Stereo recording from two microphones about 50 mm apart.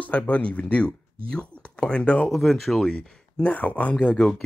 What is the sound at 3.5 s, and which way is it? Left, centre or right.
Speech, left.